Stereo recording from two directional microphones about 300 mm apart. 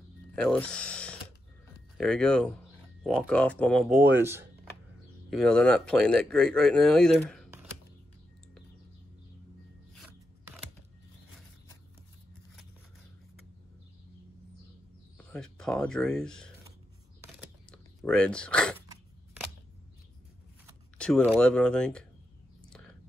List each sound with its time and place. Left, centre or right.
0.4 s speech: centre
15.3 s speech: centre
17.6 s a sound: centre
21.0 s speech: centre
22.7 s whispering: centre